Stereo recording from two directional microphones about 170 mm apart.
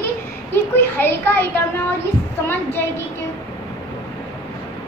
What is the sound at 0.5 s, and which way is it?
A child's voice, 15° left (ahead or behind).